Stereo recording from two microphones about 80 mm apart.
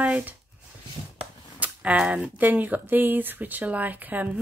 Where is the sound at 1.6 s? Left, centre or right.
Centre.